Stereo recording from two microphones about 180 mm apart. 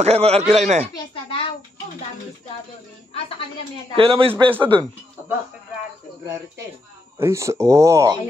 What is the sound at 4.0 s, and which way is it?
Speech, 30° right (ahead or behind).